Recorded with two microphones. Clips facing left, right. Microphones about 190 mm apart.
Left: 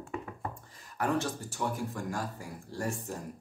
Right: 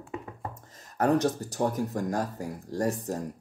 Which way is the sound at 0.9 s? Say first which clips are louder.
Right 7 dB; 40° right (ahead or behind).